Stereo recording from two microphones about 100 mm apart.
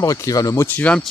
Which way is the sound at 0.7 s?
15° left (ahead or behind).